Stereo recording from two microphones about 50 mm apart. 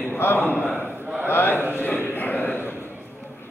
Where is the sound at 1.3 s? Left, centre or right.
Left.